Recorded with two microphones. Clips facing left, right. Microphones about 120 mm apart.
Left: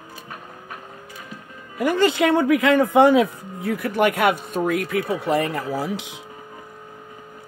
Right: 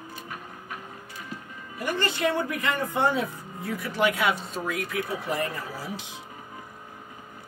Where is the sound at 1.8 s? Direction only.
90° left.